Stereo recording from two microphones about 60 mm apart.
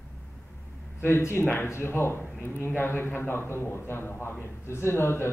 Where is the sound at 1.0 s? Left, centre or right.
Left.